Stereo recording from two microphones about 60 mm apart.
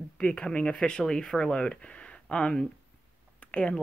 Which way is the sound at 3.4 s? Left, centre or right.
Centre.